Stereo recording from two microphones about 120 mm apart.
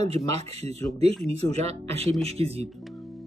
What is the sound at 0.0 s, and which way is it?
Speech, 60° right (ahead or behind).